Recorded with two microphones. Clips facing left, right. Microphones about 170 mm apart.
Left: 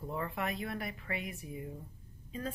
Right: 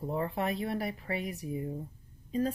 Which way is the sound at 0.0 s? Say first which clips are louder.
Right 5 dB; 30° right (ahead or behind).